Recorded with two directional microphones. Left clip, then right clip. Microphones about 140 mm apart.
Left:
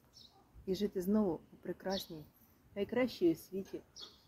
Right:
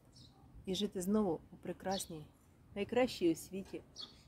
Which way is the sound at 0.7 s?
25° right (ahead or behind).